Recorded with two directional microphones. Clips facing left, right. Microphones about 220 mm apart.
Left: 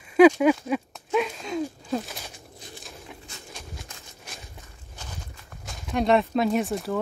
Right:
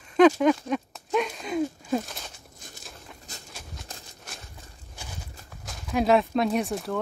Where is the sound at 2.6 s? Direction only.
50° right (ahead or behind).